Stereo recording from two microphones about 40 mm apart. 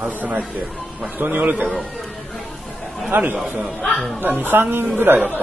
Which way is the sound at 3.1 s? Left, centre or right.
Right.